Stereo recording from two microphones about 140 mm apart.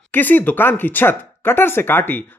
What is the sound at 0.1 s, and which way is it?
Speech, 15° left (ahead or behind).